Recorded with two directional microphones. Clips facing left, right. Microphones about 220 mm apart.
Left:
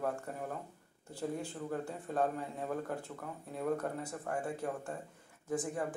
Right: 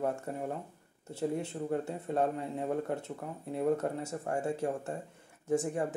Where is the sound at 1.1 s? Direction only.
25° right (ahead or behind).